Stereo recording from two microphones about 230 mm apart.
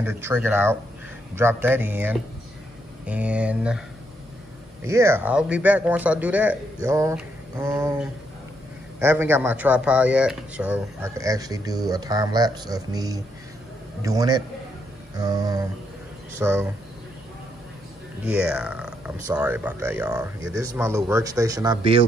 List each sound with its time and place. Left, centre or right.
0.0 s speech: centre
4.8 s speech: centre
18.2 s speech: centre